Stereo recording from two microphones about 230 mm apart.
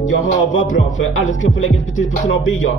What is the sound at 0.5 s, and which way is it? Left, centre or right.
Music, left.